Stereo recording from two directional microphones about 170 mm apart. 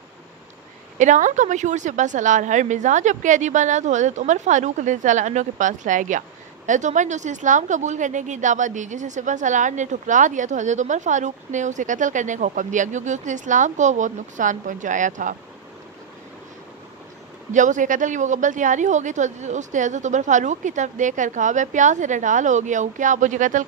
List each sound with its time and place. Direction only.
0.9 s a woman's voice: 45° right (ahead or behind)
17.5 s a woman's voice: 45° right (ahead or behind)